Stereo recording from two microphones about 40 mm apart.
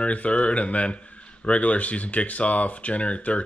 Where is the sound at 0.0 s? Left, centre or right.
Left.